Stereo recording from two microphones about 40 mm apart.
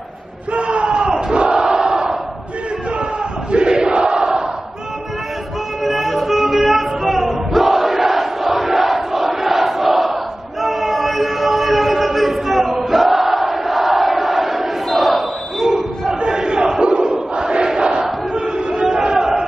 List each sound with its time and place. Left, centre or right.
0.5 s crowd: right
3.5 s crowd: right
5.9 s crowd: centre
10.6 s choir: centre
16.2 s crowd: centre
18.3 s battle cry: right
18.9 s a sound: centre